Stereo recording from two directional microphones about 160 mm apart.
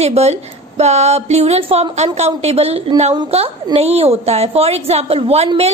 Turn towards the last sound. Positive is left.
turn(degrees=-40)  # may be behind; listen again after turning